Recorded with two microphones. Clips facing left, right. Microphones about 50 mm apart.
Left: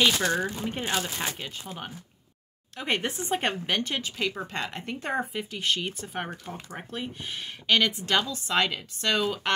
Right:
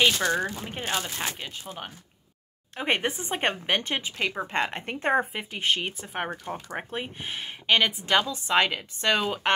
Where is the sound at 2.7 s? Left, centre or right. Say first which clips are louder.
Right 2 dB; right.